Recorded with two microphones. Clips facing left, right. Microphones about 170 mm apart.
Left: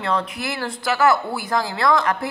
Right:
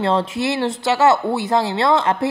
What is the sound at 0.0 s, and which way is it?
Speech, 25° right (ahead or behind).